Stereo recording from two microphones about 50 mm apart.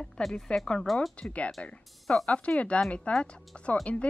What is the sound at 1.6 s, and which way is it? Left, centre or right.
A woman's voice, left.